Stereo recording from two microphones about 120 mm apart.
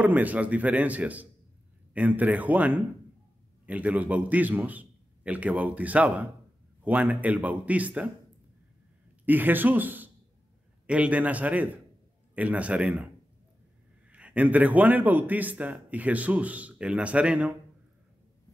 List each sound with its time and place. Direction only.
0.0 s a man's voice: 15° right (ahead or behind)
9.2 s a man's voice: 15° right (ahead or behind)